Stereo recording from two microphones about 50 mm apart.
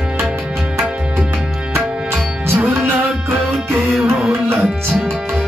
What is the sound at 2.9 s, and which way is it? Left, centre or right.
Music, right.